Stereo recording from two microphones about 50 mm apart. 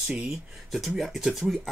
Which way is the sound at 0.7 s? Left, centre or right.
Centre.